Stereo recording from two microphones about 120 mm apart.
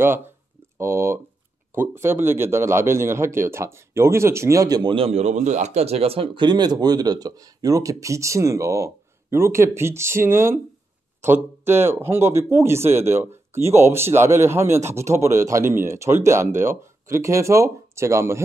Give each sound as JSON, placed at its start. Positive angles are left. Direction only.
{"t": 0.0, "sound": "speech", "side_deg": -20}
{"t": 4.9, "sound": "speech", "side_deg": -60}